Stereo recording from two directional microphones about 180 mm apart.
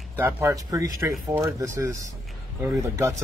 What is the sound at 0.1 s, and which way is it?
Speech, 10° right (ahead or behind).